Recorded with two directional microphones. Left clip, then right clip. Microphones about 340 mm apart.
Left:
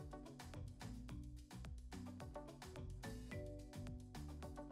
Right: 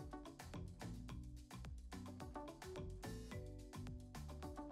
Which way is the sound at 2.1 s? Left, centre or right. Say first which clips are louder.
Right 4 dB; centre.